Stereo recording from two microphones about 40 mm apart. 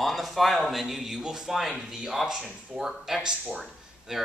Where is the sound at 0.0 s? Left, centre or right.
Centre.